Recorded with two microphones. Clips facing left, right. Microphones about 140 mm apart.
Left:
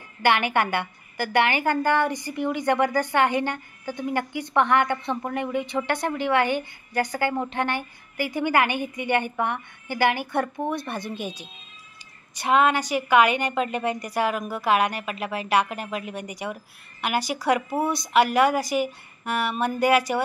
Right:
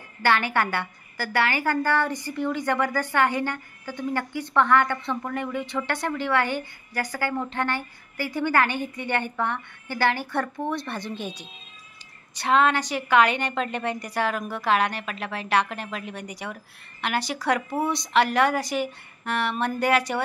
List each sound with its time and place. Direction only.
0.2 s a woman's voice: 15° left (ahead or behind)